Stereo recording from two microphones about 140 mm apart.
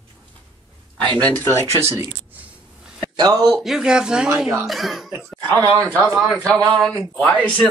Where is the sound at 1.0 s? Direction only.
10° left (ahead or behind).